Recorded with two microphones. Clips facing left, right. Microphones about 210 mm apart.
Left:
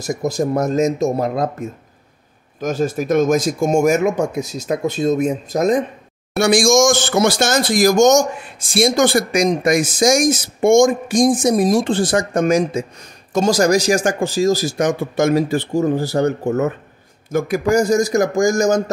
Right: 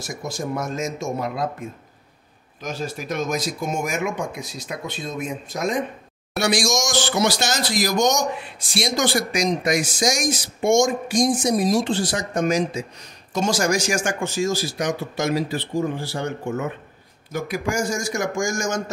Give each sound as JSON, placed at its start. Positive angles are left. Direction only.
{"t": 0.1, "sound": "speech", "side_deg": 40}
{"t": 13.3, "sound": "speech", "side_deg": 40}